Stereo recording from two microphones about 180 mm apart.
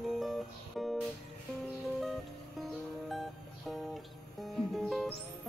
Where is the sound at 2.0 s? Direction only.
Centre (ahead or behind).